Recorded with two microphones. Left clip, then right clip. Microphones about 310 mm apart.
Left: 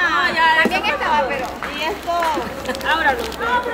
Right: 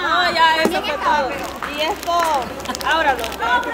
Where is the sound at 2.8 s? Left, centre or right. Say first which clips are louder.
Even; right.